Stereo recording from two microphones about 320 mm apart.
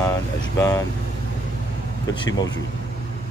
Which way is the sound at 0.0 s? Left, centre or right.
Centre.